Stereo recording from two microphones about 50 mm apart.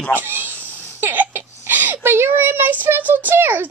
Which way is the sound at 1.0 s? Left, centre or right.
Right.